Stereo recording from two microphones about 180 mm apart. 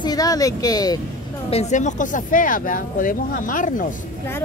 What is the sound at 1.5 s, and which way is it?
Speech, 40° left (ahead or behind).